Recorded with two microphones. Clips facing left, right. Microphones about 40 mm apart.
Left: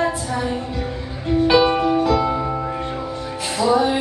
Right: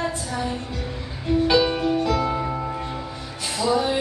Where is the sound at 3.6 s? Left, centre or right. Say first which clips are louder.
Left 4 dB; centre.